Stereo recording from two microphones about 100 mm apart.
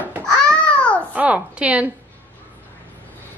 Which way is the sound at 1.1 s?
15° right (ahead or behind).